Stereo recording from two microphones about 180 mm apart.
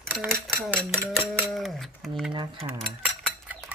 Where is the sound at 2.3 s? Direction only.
25° right (ahead or behind).